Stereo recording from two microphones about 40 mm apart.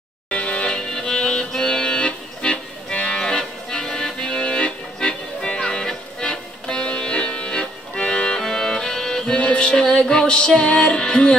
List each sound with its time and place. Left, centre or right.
0.3 s accordion: left
9.3 s music: left